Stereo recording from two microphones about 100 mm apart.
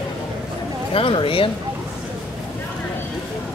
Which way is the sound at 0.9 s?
65° left (ahead or behind).